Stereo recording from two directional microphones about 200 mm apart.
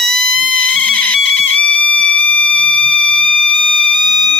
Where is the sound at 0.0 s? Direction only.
Centre (ahead or behind).